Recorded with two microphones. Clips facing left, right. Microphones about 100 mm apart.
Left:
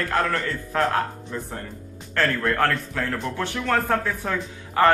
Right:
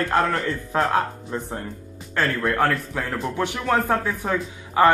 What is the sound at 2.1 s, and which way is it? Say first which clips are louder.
Speech: even; 10° right (ahead or behind).